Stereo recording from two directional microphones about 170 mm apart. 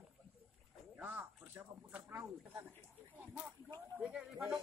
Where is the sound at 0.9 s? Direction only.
10° right (ahead or behind).